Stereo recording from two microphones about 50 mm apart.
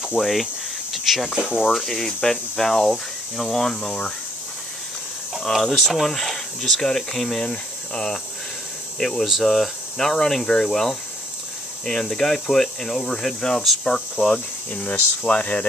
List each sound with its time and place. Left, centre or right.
0.2 s speech: centre
1.3 s speech: centre
1.7 s speech: centre
5.4 s speech: centre
7.4 s speech: centre
14.3 s speech: left